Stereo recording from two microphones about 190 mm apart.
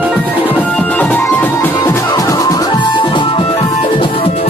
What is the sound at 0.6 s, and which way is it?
Music, 5° left (ahead or behind).